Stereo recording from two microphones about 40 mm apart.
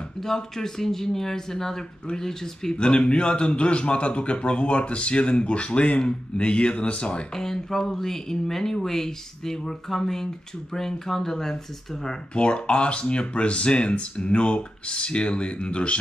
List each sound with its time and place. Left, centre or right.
0.2 s speech: centre
2.7 s a man's voice: left
7.3 s speech: centre
12.4 s a man's voice: left